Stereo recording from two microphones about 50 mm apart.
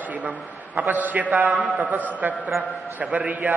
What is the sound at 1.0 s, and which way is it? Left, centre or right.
Speech, right.